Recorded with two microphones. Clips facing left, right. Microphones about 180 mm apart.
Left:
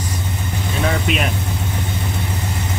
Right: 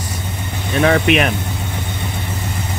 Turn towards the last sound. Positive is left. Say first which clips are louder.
# right 6 dB
turn(degrees=-70)  # may be behind; listen again after turning